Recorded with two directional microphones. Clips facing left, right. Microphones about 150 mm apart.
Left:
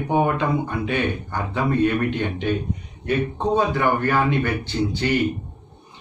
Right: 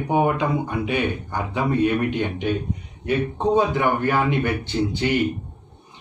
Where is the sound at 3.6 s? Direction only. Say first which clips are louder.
Left 1 dB; 15° right (ahead or behind).